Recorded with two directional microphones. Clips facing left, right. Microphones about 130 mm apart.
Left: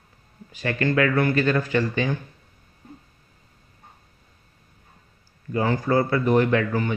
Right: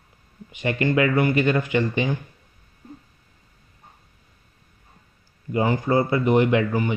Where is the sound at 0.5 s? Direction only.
20° right (ahead or behind).